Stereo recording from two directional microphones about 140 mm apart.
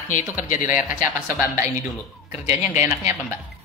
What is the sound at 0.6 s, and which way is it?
Speech, 15° right (ahead or behind).